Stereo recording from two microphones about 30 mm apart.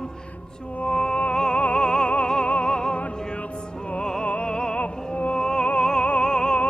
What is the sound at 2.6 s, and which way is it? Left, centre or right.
Opera, left.